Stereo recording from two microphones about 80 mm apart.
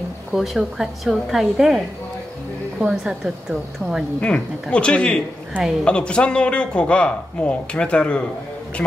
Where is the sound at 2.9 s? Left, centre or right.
Centre.